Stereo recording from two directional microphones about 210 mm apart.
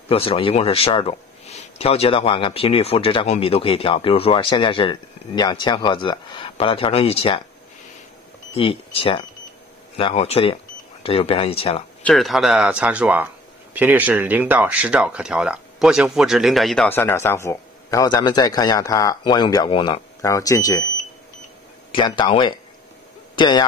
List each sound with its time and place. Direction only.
0.1 s speech: 25° left (ahead or behind)
8.5 s speech: 25° left (ahead or behind)
12.0 s speech: centre (ahead or behind); by 20.9 s 15° left (ahead or behind)
21.9 s speech: 20° left (ahead or behind)